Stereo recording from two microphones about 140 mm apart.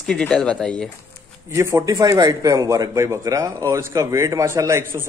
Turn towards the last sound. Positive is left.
turn(degrees=-20)  # may be behind; listen again after turning